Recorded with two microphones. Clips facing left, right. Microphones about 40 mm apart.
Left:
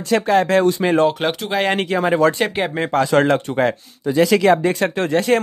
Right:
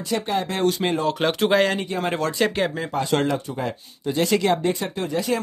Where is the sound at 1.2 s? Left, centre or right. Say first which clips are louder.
Left 2 dB; centre.